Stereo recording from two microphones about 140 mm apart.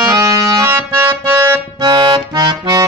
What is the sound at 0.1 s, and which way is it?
Music, 25° right (ahead or behind).